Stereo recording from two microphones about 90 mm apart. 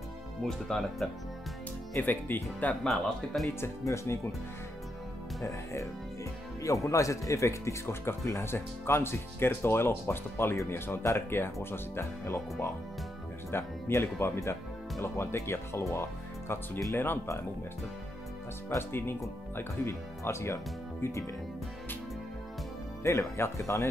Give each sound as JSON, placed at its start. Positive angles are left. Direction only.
{"t": 0.4, "sound": "speech", "side_deg": 5}
{"t": 2.0, "sound": "speech", "side_deg": 20}
{"t": 2.8, "sound": "speech", "side_deg": 0}
{"t": 3.6, "sound": "speech", "side_deg": 35}
{"t": 5.4, "sound": "speech", "side_deg": 35}
{"t": 18.8, "sound": "speech", "side_deg": 25}
{"t": 23.0, "sound": "speech", "side_deg": 30}